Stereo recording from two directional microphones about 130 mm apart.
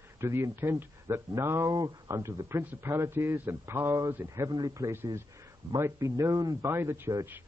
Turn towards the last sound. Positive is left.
turn(degrees=-20)  # may be behind; listen again after turning